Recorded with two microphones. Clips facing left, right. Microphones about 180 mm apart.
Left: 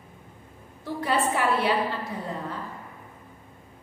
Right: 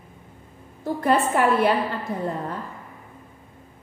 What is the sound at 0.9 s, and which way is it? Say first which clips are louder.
A woman's voice: right 5 dB; 50° right (ahead or behind).